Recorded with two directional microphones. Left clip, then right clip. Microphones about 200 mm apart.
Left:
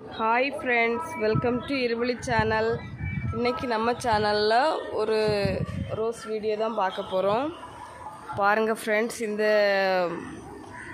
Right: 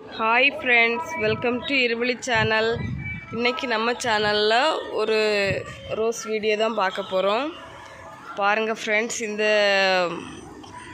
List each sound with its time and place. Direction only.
0.2 s speech: centre (ahead or behind)
5.9 s speech: 20° right (ahead or behind)
7.1 s speech: centre (ahead or behind)
8.4 s speech: 15° left (ahead or behind)